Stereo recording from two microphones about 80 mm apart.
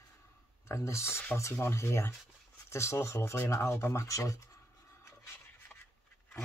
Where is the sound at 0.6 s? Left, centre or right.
Left.